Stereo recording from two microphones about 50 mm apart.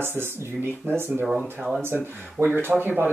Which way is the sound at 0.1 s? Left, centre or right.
Right.